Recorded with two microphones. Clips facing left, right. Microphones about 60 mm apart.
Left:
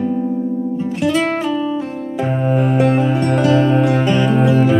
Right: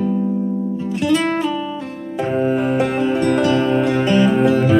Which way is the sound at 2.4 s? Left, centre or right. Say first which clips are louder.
Left 4 dB; centre.